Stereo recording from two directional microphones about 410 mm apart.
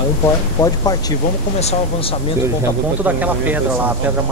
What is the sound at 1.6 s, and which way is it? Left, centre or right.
Speech, centre.